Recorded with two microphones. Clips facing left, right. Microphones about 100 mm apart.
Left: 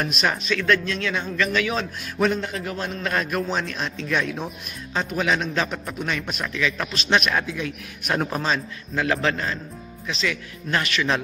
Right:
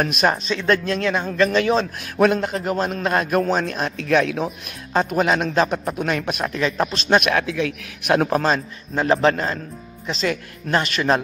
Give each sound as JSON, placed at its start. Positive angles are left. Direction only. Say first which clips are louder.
{"t": 0.0, "sound": "speech", "louder": "right 5 dB", "side_deg": -45}
{"t": 0.4, "sound": "speech", "louder": "right 2 dB", "side_deg": -30}
{"t": 0.8, "sound": "speech", "louder": "right 5 dB", "side_deg": -40}
{"t": 2.1, "sound": "a man's voice", "louder": "right 5 dB", "side_deg": -60}
{"t": 2.9, "sound": "speech", "louder": "right 5 dB", "side_deg": -50}
{"t": 4.9, "sound": "speech", "louder": "right 5 dB", "side_deg": -45}
{"t": 5.9, "sound": "speech", "louder": "right 2 dB", "side_deg": -55}
{"t": 7.2, "sound": "a man's voice", "louder": "right 4 dB", "side_deg": -70}
{"t": 8.9, "sound": "speech", "louder": "right 5 dB", "side_deg": -35}